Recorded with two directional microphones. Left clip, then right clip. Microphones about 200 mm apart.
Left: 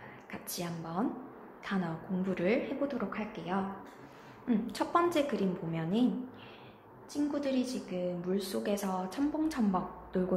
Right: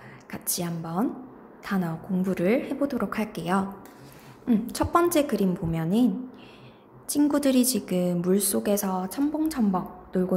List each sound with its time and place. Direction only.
0.3 s a woman's voice: 25° right (ahead or behind)
4.5 s a woman's voice: 25° right (ahead or behind)
7.1 s a woman's voice: 40° right (ahead or behind); by 10.2 s 20° right (ahead or behind)